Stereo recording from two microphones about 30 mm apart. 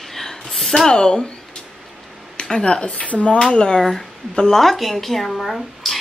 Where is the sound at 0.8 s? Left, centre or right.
Left.